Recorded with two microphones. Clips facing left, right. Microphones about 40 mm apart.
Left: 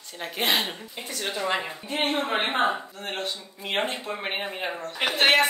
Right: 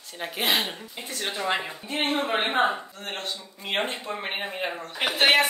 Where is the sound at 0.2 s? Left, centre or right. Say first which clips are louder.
Even; centre.